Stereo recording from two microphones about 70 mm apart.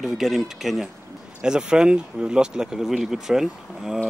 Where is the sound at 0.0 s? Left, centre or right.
Centre.